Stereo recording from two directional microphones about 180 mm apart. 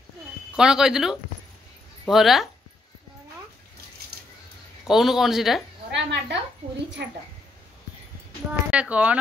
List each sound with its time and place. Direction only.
0.6 s a man's voice: 5° right (ahead or behind)
4.8 s a man's voice: centre (ahead or behind)
5.9 s a woman's voice: 75° right (ahead or behind)
8.5 s speech: 5° right (ahead or behind)